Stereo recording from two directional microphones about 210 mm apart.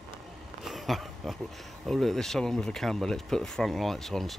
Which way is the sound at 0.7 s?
Centre (ahead or behind).